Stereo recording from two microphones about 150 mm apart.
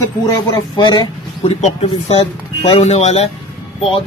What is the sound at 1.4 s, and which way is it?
Speech, 40° left (ahead or behind).